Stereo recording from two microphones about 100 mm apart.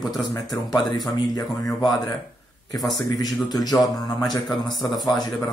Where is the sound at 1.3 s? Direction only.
40° left (ahead or behind).